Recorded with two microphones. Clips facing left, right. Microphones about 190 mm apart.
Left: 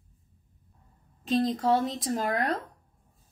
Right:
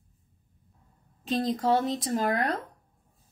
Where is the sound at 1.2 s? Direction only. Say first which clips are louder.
Left 1 dB; centre (ahead or behind).